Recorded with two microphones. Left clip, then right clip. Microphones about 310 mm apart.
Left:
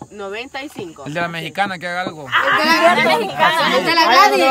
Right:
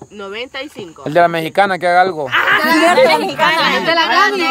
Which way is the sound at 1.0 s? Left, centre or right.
Centre.